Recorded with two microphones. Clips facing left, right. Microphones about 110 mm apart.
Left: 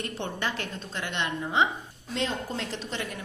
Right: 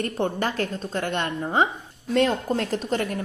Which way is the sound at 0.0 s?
45° right (ahead or behind).